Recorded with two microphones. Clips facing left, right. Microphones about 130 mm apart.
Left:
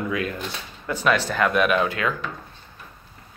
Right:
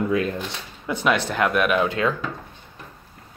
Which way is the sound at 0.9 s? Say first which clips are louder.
Even; 15° right (ahead or behind).